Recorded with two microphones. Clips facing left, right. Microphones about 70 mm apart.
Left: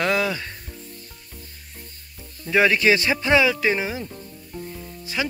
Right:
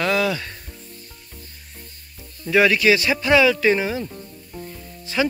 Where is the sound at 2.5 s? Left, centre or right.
Left.